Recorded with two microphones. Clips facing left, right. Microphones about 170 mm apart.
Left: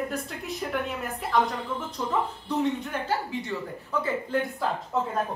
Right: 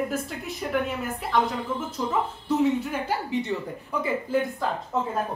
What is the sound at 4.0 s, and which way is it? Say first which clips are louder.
Speech: right 2 dB; 5° right (ahead or behind).